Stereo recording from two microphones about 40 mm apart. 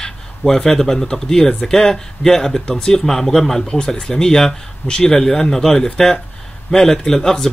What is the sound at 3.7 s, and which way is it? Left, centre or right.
Speech, centre.